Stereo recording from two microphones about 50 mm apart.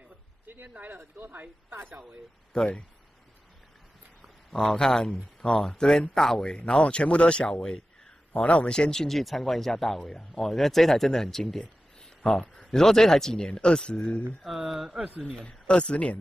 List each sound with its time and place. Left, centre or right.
0.5 s speech: right
2.5 s speech: left
4.5 s speech: centre
6.5 s speech: left; by 11.6 s centre
12.0 s a sound: centre
12.7 s speech: centre
14.7 s speech: centre
15.4 s speech: left